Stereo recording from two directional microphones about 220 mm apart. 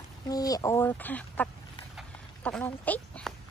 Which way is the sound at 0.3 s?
15° left (ahead or behind).